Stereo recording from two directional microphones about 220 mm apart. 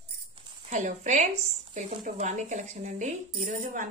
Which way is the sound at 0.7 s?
35° right (ahead or behind).